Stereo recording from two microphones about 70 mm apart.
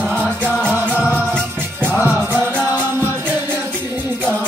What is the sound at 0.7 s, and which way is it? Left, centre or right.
Music, right.